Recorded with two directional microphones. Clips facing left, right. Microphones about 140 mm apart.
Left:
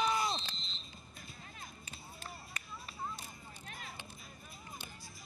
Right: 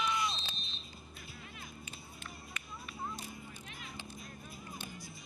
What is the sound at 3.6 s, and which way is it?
Vehicle, 40° left (ahead or behind).